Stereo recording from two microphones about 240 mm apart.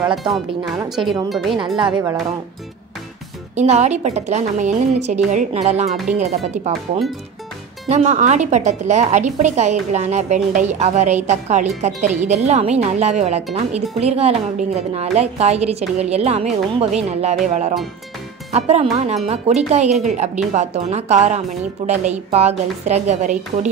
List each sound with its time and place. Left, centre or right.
0.3 s speech: centre
0.8 s speech: centre
1.8 s speech: centre
3.5 s a woman's voice: right
5.9 s speech: centre
6.1 s a woman's voice: right
18.5 s a woman's voice: right